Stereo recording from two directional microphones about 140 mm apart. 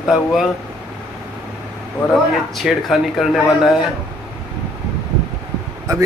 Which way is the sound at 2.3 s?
Centre (ahead or behind).